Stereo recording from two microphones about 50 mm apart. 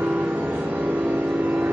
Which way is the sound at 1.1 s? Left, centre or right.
Right.